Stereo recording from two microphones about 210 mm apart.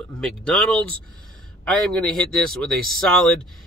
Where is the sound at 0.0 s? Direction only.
5° left (ahead or behind).